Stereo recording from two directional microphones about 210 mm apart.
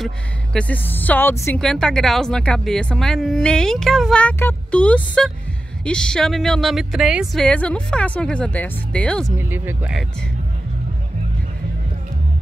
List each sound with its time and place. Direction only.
0.0 s a woman's voice: 5° left (ahead or behind)
9.4 s speech: 10° right (ahead or behind)